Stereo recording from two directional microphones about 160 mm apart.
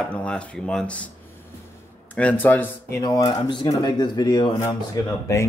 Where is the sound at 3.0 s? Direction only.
25° left (ahead or behind).